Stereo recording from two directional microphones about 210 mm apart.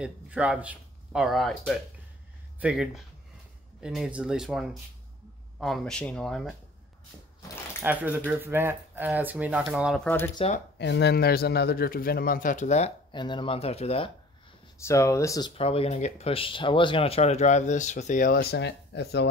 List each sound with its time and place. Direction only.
0.0 s speech: 5° right (ahead or behind)
7.8 s speech: 10° right (ahead or behind)
10.0 s speech: 10° left (ahead or behind)
10.3 s speech: 30° left (ahead or behind)
10.8 s speech: 55° left (ahead or behind); by 14.1 s 30° left (ahead or behind)
14.9 s speech: 15° left (ahead or behind)
15.5 s speech: 25° left (ahead or behind); by 19.2 s 55° left (ahead or behind)